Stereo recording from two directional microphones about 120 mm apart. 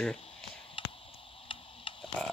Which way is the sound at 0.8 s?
45° left (ahead or behind).